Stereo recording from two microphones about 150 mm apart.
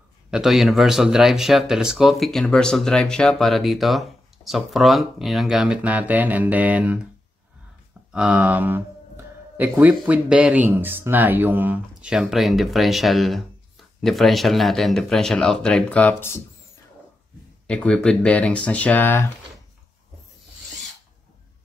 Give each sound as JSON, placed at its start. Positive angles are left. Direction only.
{"t": 0.3, "sound": "speech", "side_deg": 0}
{"t": 8.1, "sound": "speech", "side_deg": -10}
{"t": 17.6, "sound": "speech", "side_deg": 5}